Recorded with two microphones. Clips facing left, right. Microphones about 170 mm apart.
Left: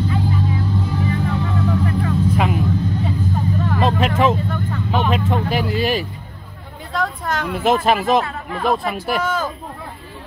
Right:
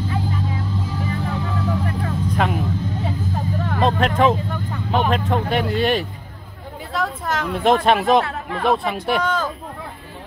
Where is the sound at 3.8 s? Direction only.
5° left (ahead or behind).